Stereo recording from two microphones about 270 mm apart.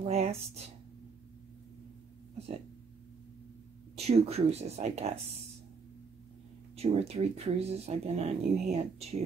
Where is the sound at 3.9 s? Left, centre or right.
Right.